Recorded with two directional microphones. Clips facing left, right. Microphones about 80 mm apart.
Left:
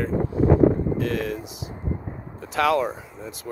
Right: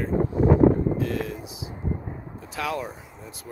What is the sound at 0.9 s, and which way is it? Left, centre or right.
Speech, left.